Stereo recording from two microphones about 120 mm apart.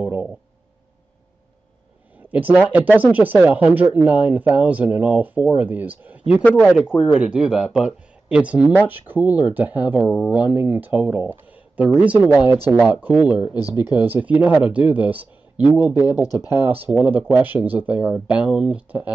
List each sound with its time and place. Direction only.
0.0 s a sound: 15° right (ahead or behind)
2.1 s speech: 15° right (ahead or behind)
6.4 s speech: 15° left (ahead or behind)
7.0 s speech: 5° right (ahead or behind)